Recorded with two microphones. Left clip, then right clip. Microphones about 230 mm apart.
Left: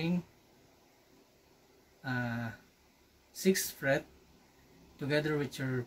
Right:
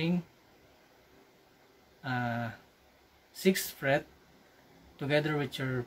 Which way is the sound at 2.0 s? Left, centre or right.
Centre.